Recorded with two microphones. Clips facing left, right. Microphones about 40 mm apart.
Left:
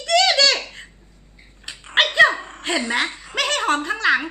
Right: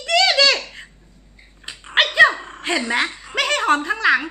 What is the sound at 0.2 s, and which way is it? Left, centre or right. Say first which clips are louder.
Baby laughter: right 3 dB; centre.